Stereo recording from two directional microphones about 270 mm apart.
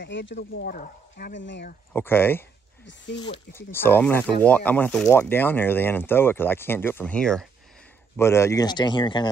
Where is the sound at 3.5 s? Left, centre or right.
Centre.